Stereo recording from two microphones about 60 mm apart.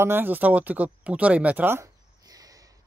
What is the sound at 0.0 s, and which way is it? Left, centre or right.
Speech, right.